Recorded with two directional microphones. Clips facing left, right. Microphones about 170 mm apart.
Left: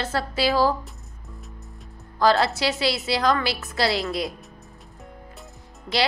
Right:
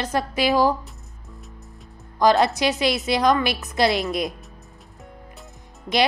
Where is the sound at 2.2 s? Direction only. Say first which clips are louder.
Right 2 dB; 20° right (ahead or behind).